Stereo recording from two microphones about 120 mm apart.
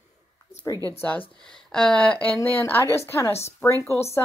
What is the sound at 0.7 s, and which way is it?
Speech, 30° left (ahead or behind).